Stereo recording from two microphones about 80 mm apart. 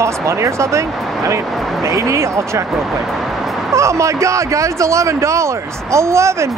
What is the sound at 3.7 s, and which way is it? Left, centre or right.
A man's voice, right.